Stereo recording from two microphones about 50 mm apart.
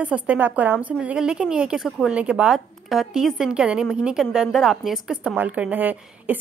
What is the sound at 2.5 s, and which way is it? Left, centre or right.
A woman's voice, centre.